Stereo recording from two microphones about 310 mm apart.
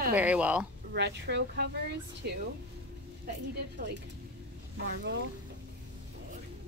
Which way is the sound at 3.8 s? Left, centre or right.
Right.